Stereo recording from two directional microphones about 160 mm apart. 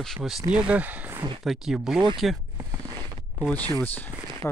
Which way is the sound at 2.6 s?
25° right (ahead or behind).